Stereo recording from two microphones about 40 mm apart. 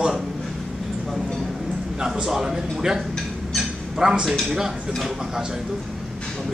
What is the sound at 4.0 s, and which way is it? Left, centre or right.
Speech, centre.